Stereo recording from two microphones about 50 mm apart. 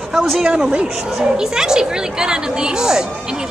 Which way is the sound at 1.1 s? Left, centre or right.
Centre.